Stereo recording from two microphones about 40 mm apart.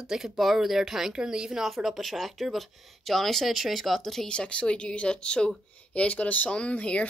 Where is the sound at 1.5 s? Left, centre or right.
Centre.